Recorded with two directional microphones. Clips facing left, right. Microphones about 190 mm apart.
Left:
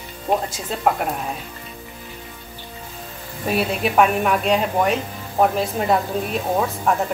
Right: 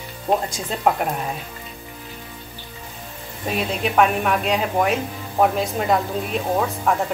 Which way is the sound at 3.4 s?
5° left (ahead or behind).